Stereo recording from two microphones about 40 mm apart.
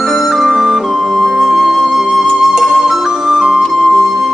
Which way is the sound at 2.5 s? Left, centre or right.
Centre.